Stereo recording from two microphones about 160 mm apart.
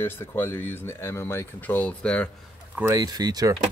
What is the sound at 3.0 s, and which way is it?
Speech, 25° right (ahead or behind).